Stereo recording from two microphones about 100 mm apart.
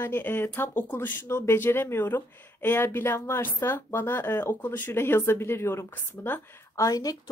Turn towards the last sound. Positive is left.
turn(degrees=35)  # may be behind; listen again after turning